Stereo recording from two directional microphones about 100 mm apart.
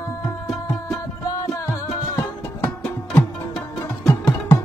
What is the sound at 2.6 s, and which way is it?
Music, 20° left (ahead or behind).